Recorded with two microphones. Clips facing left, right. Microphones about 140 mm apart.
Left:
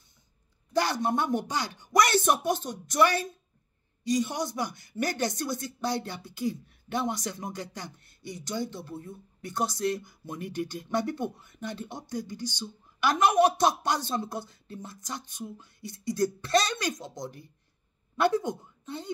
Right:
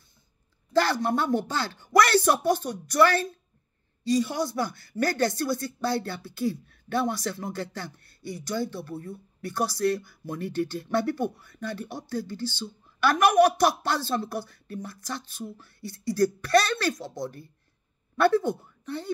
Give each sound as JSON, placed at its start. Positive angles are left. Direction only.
{"t": 0.7, "sound": "speech", "side_deg": 20}